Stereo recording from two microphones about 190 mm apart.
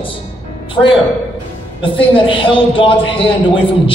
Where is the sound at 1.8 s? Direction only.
25° left (ahead or behind).